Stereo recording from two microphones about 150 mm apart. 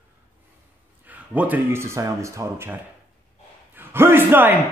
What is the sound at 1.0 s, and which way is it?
Speech, 10° right (ahead or behind).